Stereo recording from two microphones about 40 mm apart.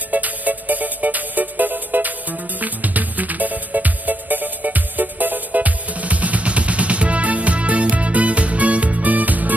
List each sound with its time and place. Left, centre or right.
0.1 s music: right